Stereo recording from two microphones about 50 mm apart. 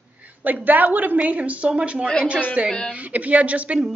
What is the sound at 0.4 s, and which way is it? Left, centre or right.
A woman's voice, right.